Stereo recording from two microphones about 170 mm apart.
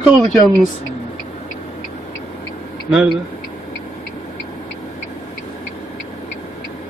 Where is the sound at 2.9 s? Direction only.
5° right (ahead or behind).